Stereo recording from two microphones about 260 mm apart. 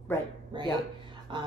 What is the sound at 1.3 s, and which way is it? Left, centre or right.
Speech, centre.